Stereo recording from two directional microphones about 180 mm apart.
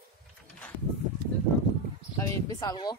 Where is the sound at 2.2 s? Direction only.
20° left (ahead or behind).